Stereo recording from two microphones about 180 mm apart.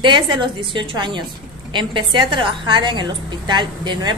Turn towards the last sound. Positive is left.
turn(degrees=-25)  # may be behind; listen again after turning